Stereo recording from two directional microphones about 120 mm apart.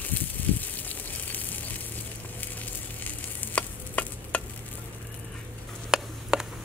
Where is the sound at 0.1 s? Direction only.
15° left (ahead or behind).